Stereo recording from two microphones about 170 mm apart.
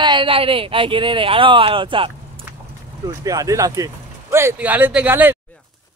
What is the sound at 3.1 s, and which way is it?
Speech, 20° right (ahead or behind).